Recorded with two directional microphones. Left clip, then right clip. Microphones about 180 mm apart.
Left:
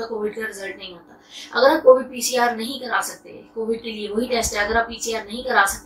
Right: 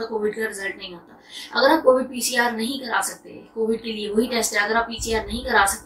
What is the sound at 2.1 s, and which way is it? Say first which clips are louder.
Speech: left 2 dB; 10° right (ahead or behind).